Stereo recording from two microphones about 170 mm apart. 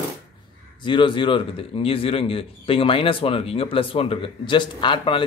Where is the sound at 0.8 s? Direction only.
30° left (ahead or behind).